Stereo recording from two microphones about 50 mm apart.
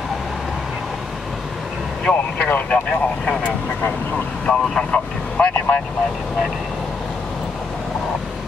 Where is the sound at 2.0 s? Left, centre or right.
Centre.